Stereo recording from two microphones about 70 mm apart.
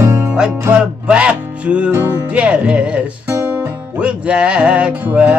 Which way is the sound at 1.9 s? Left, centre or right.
Right.